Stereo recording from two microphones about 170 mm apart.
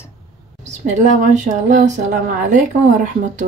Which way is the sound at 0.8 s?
45° right (ahead or behind).